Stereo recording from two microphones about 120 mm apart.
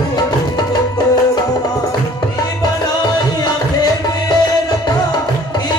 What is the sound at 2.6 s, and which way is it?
Music, 35° left (ahead or behind).